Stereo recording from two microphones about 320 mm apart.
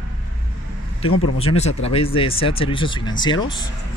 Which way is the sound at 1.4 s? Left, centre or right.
Centre.